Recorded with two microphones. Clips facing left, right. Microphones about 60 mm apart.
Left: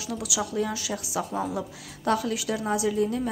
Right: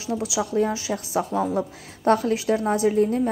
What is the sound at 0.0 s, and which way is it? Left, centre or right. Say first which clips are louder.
A woman's voice: right 5 dB; right.